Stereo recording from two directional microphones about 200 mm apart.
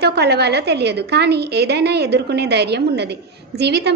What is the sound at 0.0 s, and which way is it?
A woman's voice, 55° right (ahead or behind).